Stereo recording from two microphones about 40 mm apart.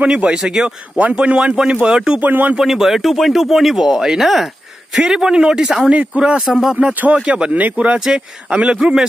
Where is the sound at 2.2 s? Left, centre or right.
Right.